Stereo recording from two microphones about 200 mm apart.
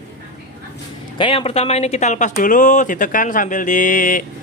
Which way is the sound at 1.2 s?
30° left (ahead or behind).